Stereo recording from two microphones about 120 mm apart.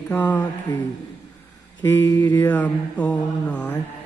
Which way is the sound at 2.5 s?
10° left (ahead or behind).